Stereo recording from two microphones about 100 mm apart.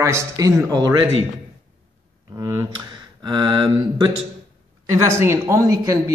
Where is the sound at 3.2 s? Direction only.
50° right (ahead or behind).